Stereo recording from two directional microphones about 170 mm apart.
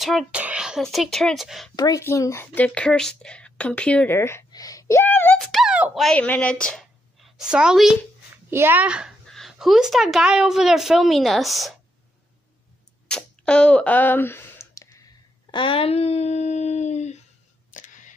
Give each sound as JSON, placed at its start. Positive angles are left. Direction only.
{"t": 0.0, "sound": "speech", "side_deg": 0}
{"t": 1.8, "sound": "speech", "side_deg": 20}
{"t": 5.4, "sound": "a child's voice", "side_deg": 0}
{"t": 13.1, "sound": "a sound", "side_deg": 5}
{"t": 15.5, "sound": "a sound", "side_deg": 30}
{"t": 17.6, "sound": "camera", "side_deg": 50}